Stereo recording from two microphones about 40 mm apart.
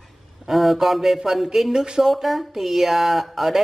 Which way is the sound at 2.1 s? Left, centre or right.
Centre.